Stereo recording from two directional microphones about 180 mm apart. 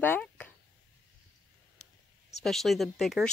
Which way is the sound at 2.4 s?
Centre (ahead or behind).